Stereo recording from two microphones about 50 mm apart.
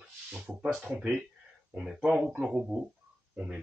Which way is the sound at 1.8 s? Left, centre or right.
Centre.